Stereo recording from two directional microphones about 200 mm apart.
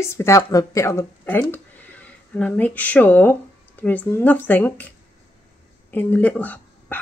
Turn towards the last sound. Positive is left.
turn(degrees=10)  # may be behind; listen again after turning